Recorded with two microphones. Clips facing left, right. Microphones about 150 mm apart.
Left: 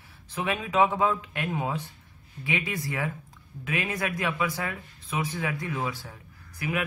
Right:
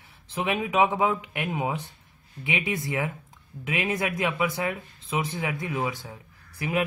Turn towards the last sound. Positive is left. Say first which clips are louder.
# right 3 dB
turn(degrees=-25)  # may be behind; listen again after turning